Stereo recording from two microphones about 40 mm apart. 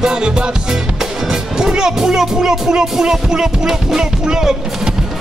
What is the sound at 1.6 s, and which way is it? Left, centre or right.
Music, centre.